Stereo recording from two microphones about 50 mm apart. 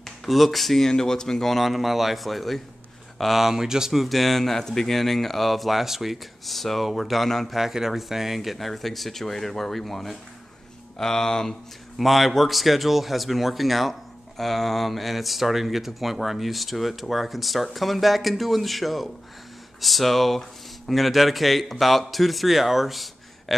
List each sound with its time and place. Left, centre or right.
0.0 s speech: centre
7.5 s speech: centre
12.0 s speech: centre